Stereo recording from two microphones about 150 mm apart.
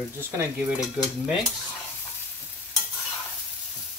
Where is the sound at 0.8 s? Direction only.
5° right (ahead or behind).